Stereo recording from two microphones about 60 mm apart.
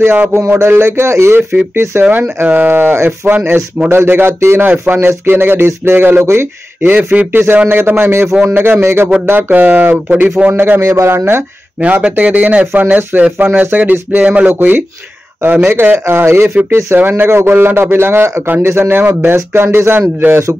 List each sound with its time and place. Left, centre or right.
0.0 s speech: right
0.5 s speech: right
2.4 s speech: right
6.2 s speech: right
6.8 s speech: right
8.8 s speech: right
10.5 s speech: right
11.8 s speech: right
15.7 s speech: right